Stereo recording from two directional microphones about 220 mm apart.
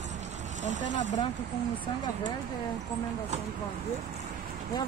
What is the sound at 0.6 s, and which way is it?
Speech, 35° right (ahead or behind).